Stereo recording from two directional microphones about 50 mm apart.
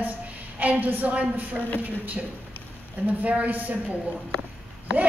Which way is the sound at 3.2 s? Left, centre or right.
Right.